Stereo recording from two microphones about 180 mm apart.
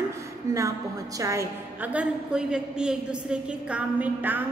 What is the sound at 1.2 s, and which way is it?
Speech, 15° right (ahead or behind).